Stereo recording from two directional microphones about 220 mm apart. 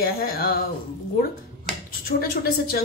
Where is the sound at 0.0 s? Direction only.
45° left (ahead or behind).